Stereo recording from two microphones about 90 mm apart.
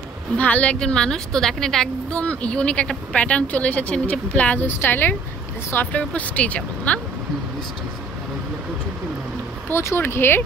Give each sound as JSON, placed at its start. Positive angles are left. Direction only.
{"t": 0.4, "sound": "a woman's voice", "side_deg": 15}
{"t": 9.7, "sound": "speech", "side_deg": 25}